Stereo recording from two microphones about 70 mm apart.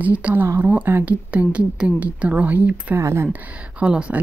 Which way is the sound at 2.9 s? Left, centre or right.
Right.